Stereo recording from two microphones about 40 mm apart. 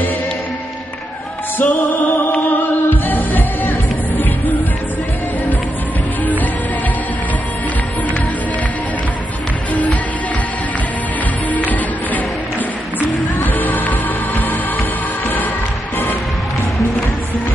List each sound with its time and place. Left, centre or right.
1.6 s music: left
11.5 s music: left
13.4 s music: left